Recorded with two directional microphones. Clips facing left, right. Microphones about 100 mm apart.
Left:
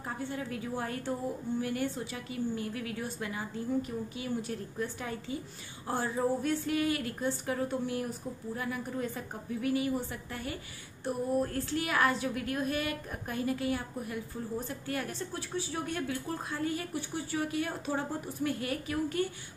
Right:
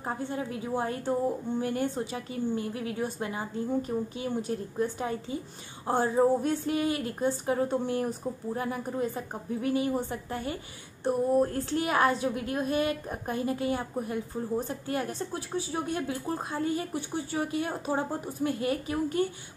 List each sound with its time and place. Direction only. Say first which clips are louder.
0.2 s a woman's voice: right 3 dB; 25° right (ahead or behind)